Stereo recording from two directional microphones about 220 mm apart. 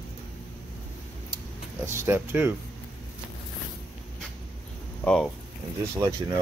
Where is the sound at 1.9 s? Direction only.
10° right (ahead or behind).